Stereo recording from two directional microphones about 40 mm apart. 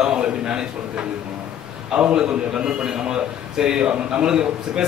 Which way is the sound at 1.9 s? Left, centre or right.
Right.